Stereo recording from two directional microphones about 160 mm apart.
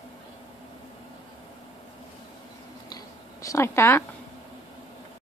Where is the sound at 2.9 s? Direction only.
20° left (ahead or behind).